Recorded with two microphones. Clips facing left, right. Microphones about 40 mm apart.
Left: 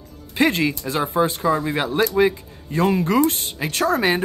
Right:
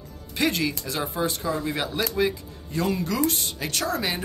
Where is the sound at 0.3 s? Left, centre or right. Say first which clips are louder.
Left 6 dB; left.